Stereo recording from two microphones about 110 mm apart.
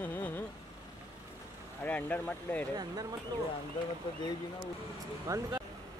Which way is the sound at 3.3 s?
40° right (ahead or behind).